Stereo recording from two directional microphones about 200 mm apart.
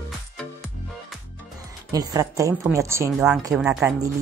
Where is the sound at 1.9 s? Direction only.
15° right (ahead or behind).